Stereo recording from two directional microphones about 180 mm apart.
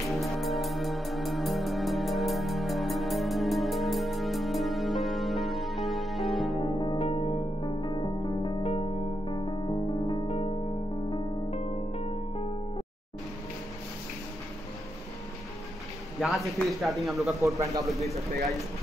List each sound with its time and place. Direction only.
0.2 s music: centre (ahead or behind)
6.6 s music: 25° left (ahead or behind)
11.6 s music: 35° left (ahead or behind)
16.2 s speech: centre (ahead or behind)
17.4 s speech: 15° right (ahead or behind)